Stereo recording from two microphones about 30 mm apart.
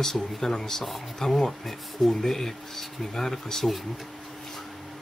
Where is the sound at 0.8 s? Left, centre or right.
Centre.